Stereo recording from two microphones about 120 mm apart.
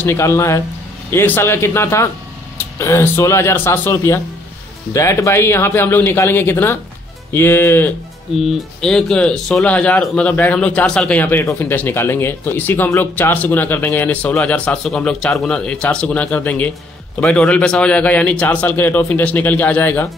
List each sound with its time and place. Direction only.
0.0 s a man's voice: 20° left (ahead or behind)
8.4 s speech: centre (ahead or behind)